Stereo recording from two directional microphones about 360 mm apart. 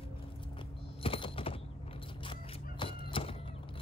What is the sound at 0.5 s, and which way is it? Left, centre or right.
Mechanisms, centre.